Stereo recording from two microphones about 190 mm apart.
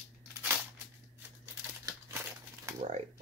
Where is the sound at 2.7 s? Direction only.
40° right (ahead or behind).